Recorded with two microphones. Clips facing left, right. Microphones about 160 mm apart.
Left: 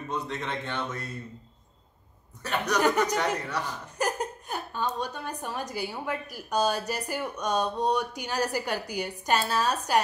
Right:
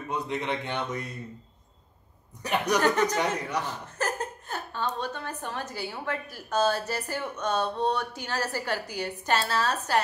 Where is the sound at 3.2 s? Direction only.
10° right (ahead or behind).